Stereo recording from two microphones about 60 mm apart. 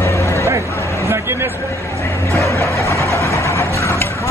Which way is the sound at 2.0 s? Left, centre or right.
Left.